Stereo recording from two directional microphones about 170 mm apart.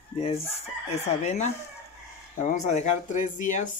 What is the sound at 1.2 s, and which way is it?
Speech, 45° left (ahead or behind).